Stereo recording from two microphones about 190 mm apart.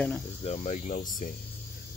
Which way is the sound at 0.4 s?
35° left (ahead or behind).